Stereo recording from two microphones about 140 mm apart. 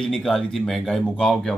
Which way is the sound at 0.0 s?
5° left (ahead or behind).